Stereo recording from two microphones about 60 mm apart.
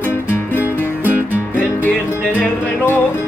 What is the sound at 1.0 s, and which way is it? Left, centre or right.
Music, right.